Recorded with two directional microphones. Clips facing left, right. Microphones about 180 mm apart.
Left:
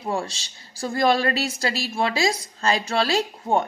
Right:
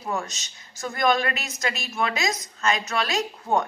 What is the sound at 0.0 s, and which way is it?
A woman's voice, 30° left (ahead or behind).